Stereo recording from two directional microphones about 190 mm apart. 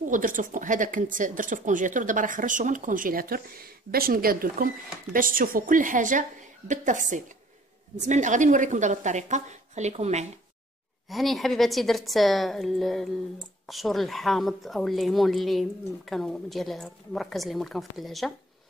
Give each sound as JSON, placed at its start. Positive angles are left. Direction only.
{"t": 0.0, "sound": "a woman's voice", "side_deg": -45}
{"t": 11.1, "sound": "a woman's voice", "side_deg": 0}